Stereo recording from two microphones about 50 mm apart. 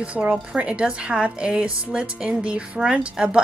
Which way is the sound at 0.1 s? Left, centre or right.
Right.